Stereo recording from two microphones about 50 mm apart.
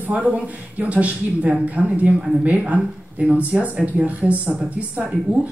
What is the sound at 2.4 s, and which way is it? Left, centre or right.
A woman's voice, right.